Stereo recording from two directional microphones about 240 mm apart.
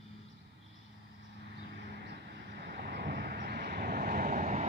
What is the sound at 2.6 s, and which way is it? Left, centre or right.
Vehicle, right.